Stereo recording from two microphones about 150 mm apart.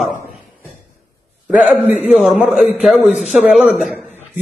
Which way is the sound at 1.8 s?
45° left (ahead or behind).